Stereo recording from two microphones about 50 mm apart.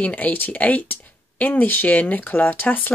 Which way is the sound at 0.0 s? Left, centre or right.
Left.